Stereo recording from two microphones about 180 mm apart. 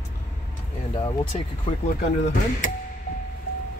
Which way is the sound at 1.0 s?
30° left (ahead or behind).